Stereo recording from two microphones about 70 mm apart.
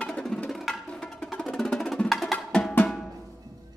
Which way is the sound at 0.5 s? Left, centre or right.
Centre.